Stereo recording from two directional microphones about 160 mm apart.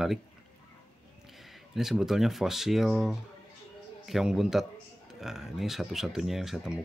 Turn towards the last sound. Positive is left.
turn(degrees=0)  # may be behind; listen again after turning